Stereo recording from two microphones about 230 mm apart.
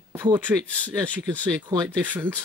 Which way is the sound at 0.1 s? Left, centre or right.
Centre.